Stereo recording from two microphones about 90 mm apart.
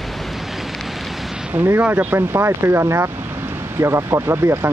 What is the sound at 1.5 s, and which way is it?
Speech, 20° right (ahead or behind).